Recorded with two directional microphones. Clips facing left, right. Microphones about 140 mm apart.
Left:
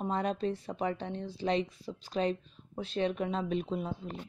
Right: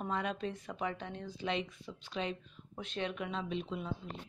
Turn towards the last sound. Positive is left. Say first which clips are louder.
# left 5 dB
turn(degrees=45)  # may be behind; listen again after turning